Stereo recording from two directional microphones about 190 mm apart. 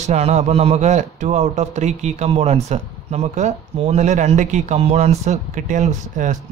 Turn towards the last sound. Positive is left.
turn(degrees=-40)  # may be behind; listen again after turning